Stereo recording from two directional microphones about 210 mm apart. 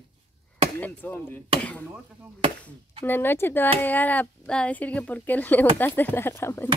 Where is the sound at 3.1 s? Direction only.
10° left (ahead or behind).